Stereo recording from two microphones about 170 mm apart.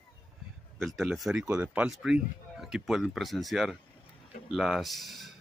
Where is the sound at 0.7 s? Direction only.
Centre (ahead or behind).